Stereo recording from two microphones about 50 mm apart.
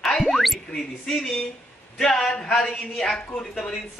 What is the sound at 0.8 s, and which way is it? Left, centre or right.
Music, centre.